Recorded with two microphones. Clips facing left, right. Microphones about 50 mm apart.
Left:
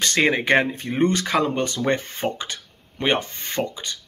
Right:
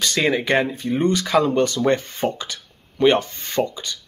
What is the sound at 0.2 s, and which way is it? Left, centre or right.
Speech, left.